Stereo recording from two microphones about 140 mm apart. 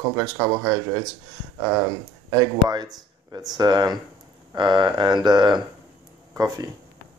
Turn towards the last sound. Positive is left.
turn(degrees=-25)  # may be behind; listen again after turning